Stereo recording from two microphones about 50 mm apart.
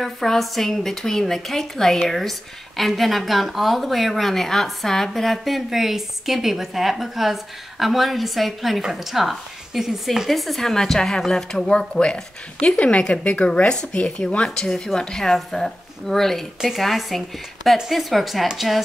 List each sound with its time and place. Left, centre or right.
0.0 s a woman's voice: centre